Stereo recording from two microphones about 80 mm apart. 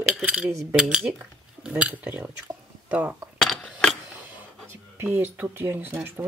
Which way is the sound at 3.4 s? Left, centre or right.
Centre.